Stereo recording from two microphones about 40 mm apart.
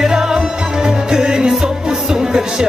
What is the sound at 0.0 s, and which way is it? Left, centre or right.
Music, centre.